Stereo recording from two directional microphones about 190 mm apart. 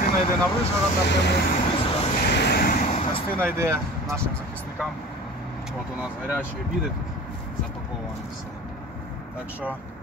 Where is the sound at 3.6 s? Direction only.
15° right (ahead or behind).